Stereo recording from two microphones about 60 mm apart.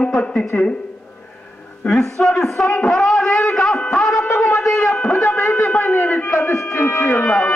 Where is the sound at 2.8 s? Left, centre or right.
Centre.